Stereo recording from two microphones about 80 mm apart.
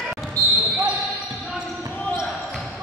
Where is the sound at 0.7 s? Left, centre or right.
Centre.